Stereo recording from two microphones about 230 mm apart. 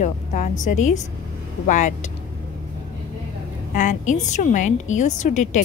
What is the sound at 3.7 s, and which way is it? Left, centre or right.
A woman's voice, left.